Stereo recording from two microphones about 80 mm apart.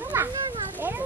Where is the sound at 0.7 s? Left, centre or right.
Right.